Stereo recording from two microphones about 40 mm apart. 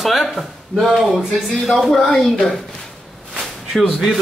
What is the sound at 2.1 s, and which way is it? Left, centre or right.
Speech, centre.